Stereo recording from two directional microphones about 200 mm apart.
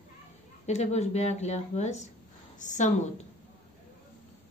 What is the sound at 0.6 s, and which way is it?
A woman's voice, 35° left (ahead or behind).